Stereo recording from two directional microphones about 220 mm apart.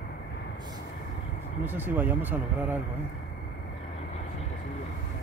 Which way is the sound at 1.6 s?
10° right (ahead or behind).